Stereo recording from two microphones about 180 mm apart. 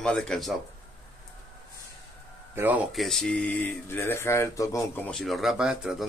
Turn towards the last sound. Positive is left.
turn(degrees=-5)  # may be behind; listen again after turning